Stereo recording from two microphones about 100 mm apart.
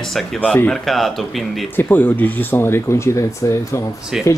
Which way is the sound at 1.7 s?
20° left (ahead or behind).